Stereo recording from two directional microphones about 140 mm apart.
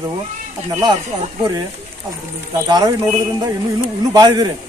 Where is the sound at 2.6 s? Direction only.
30° right (ahead or behind).